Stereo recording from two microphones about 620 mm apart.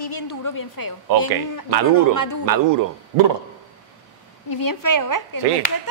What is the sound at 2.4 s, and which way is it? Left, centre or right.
Speech, right.